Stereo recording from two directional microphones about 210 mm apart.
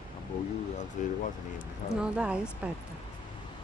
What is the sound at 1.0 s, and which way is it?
Speech, 40° left (ahead or behind).